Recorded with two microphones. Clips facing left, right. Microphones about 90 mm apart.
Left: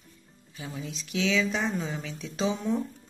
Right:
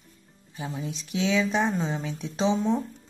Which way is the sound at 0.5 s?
25° right (ahead or behind).